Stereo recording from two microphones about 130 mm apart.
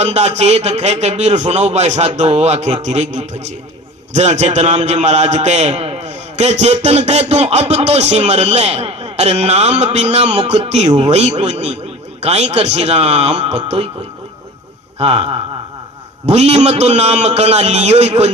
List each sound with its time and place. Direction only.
0.0 s a man's voice: 60° right (ahead or behind)
15.0 s a man's voice: 50° right (ahead or behind)